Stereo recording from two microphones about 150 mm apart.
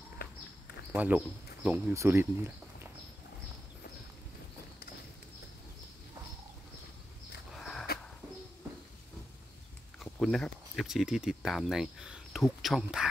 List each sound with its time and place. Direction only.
0.9 s speech: 10° right (ahead or behind)
7.5 s a sound: centre (ahead or behind)
10.2 s speech: centre (ahead or behind)